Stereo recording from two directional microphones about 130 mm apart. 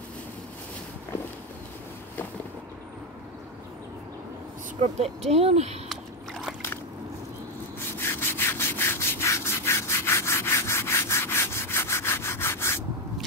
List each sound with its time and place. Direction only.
4.7 s speech: 55° right (ahead or behind)
8.0 s rub: 20° left (ahead or behind)